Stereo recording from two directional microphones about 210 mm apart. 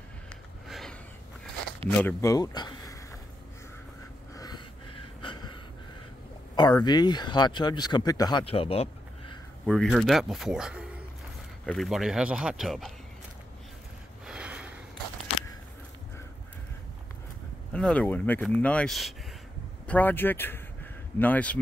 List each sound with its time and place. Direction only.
0.7 s a sound: centre (ahead or behind)
1.9 s speech: 10° left (ahead or behind)
5.2 s gasp: 20° left (ahead or behind)
6.5 s speech: 20° left (ahead or behind)
9.7 s speech: centre (ahead or behind)
14.2 s a sound: 5° right (ahead or behind)
17.7 s speech: 5° left (ahead or behind)